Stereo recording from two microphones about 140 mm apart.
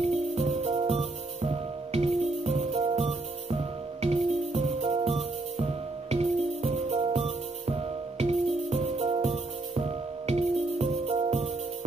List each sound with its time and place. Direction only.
0.0 s music: 45° right (ahead or behind)